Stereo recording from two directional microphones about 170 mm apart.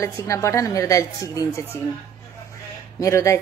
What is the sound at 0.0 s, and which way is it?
Speech, 15° left (ahead or behind).